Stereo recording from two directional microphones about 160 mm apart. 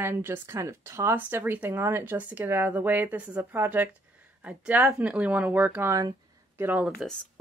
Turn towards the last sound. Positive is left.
turn(degrees=-10)  # may be behind; listen again after turning